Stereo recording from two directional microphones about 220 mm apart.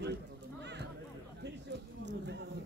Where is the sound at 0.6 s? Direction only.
50° right (ahead or behind).